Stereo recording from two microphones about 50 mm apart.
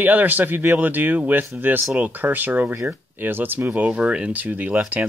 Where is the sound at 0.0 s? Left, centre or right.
Right.